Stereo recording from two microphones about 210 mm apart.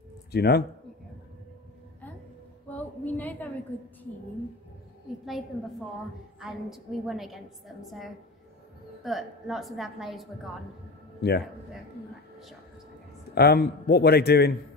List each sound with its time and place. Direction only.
0.3 s a man's voice: 50° left (ahead or behind)
2.7 s a sound: 10° left (ahead or behind)
6.4 s a woman's voice: centre (ahead or behind)
11.1 s a man's voice: 50° left (ahead or behind)
13.3 s a man's voice: 50° left (ahead or behind)